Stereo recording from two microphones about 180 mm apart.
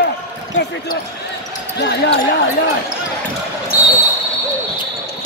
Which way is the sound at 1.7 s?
70° left (ahead or behind).